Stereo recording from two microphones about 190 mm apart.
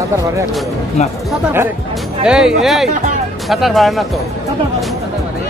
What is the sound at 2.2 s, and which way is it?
Speech, centre (ahead or behind).